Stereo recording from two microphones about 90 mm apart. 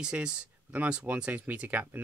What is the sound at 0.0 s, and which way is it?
Speech, 10° right (ahead or behind).